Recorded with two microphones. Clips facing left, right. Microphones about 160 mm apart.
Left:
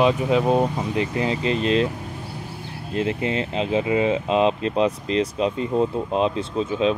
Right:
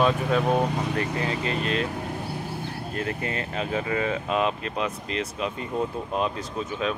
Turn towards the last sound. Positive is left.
turn(degrees=25)  # may be behind; listen again after turning